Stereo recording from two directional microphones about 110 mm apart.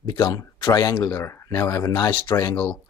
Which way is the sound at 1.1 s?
25° left (ahead or behind).